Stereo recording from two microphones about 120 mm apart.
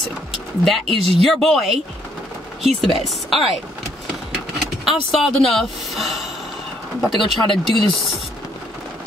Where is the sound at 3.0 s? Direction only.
Centre (ahead or behind).